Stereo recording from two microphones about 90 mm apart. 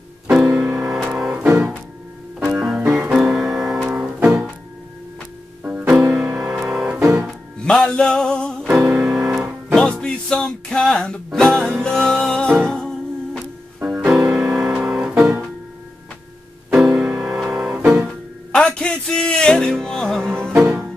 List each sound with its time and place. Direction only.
0.3 s music: 10° right (ahead or behind)
2.5 s music: 10° right (ahead or behind)
5.6 s music: 15° right (ahead or behind)
6.2 s music: 25° right (ahead or behind)
6.5 s music: 5° right (ahead or behind)
7.6 s music: 10° left (ahead or behind)
8.8 s music: 10° right (ahead or behind)
9.9 s music: 5° left (ahead or behind)
13.7 s music: 15° right (ahead or behind)
16.7 s music: 5° right (ahead or behind)
17.9 s music: 5° left (ahead or behind)